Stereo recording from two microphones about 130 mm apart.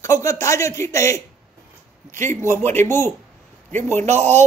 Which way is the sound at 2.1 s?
70° right (ahead or behind).